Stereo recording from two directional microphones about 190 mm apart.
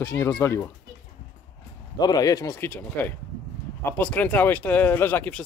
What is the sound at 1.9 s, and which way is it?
Speech, 20° left (ahead or behind).